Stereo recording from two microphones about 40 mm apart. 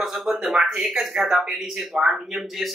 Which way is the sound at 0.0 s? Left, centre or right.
Centre.